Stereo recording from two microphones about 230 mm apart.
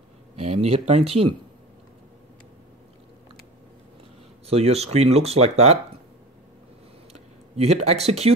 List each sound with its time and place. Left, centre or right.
0.4 s speech: right
4.5 s speech: right
7.1 s a sound: right